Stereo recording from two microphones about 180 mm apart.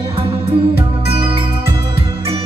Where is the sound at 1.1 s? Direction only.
30° right (ahead or behind).